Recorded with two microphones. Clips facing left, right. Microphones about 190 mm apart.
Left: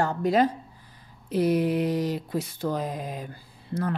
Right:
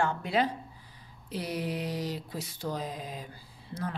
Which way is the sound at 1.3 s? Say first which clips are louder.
Left 11 dB; 50° left (ahead or behind).